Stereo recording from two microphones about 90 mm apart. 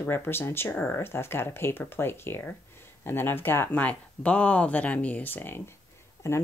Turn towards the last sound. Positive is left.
turn(degrees=30)  # may be behind; listen again after turning